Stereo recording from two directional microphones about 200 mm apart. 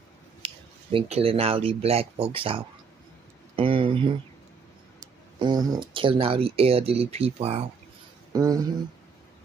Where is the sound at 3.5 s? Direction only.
25° right (ahead or behind).